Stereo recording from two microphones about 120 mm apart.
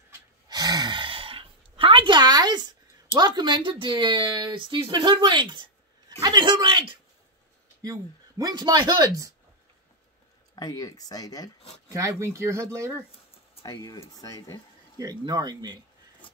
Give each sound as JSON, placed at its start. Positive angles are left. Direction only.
{"t": 0.5, "sound": "sigh", "side_deg": -35}
{"t": 3.2, "sound": "speech", "side_deg": -40}
{"t": 10.5, "sound": "speech", "side_deg": 30}
{"t": 11.9, "sound": "speech", "side_deg": -25}
{"t": 13.6, "sound": "speech", "side_deg": 30}
{"t": 15.0, "sound": "speech", "side_deg": -30}